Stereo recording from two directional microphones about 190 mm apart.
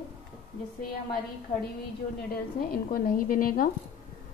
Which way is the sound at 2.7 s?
50° left (ahead or behind).